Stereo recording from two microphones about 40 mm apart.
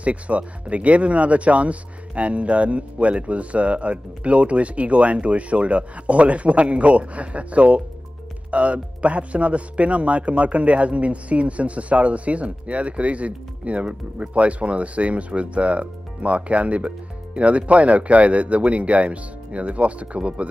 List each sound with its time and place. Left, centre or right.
0.0 s speech: right